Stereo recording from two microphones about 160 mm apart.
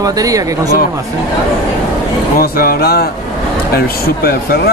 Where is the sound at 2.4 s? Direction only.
65° left (ahead or behind).